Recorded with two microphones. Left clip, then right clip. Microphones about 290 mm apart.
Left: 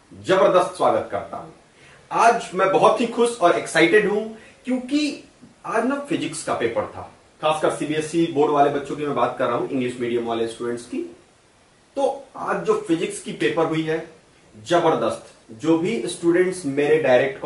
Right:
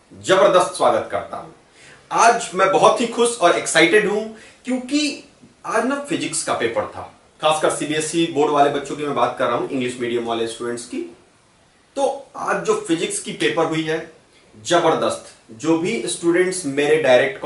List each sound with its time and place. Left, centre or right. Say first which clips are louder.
0.2 s speech: right 3 dB; centre
11.9 s speech: right 2 dB; left
12.8 s speech: right 2 dB; centre